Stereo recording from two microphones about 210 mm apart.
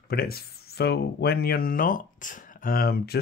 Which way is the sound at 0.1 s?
45° left (ahead or behind).